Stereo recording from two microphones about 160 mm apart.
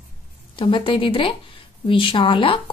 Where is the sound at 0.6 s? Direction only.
30° left (ahead or behind).